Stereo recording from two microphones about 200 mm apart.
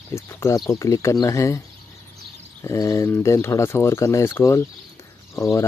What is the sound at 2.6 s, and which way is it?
Speech, 15° left (ahead or behind).